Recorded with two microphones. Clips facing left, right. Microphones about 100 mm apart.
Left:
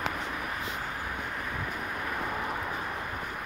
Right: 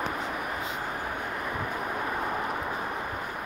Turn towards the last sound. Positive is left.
turn(degrees=-20)  # may be behind; listen again after turning